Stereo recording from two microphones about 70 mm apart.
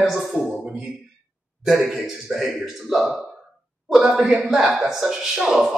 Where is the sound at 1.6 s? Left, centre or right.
Centre.